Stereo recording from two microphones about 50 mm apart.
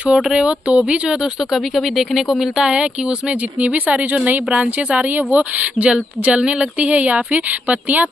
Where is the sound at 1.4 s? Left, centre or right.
Centre; by 4.2 s right.